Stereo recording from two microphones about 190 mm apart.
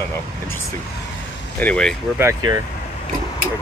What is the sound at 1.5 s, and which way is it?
Speech, 5° left (ahead or behind).